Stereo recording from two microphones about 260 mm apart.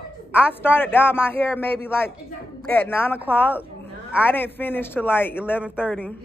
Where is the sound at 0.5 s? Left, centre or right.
Centre.